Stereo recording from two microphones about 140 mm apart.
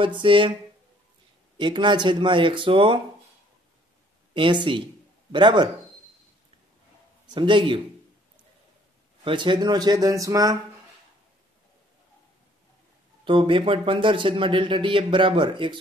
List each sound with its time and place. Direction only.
0.0 s a man's voice: 35° right (ahead or behind)
1.6 s a man's voice: 35° right (ahead or behind)
4.3 s a man's voice: 35° right (ahead or behind)
7.3 s a man's voice: 35° right (ahead or behind)
9.2 s speech: 35° right (ahead or behind)
13.2 s a man's voice: 40° right (ahead or behind)